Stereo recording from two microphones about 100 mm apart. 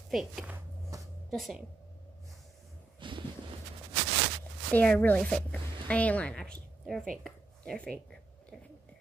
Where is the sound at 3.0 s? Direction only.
55° right (ahead or behind).